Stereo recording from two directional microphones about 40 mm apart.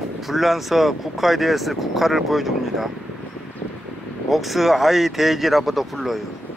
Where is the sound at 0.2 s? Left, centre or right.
Centre.